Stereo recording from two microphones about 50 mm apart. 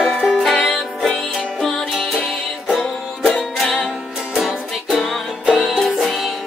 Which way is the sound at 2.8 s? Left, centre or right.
Centre.